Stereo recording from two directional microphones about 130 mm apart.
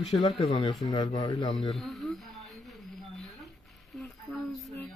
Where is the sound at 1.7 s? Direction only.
Centre (ahead or behind).